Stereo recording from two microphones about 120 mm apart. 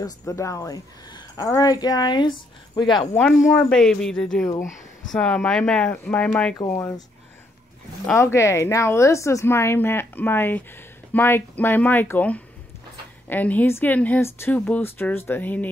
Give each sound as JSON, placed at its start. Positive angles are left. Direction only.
{"t": 0.3, "sound": "speech", "side_deg": 30}
{"t": 3.5, "sound": "speech", "side_deg": 10}
{"t": 6.7, "sound": "a woman's voice", "side_deg": 25}
{"t": 8.2, "sound": "a woman's voice", "side_deg": 25}